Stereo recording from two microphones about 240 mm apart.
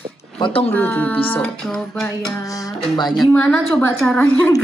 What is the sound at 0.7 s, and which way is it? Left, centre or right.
Speech, centre.